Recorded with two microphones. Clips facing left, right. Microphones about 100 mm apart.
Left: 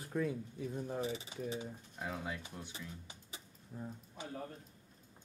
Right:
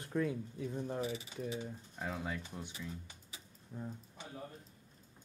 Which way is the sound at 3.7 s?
Centre (ahead or behind).